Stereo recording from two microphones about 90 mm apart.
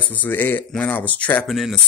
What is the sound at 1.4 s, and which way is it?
Speech, centre (ahead or behind).